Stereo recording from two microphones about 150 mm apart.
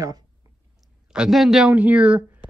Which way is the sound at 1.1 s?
5° right (ahead or behind).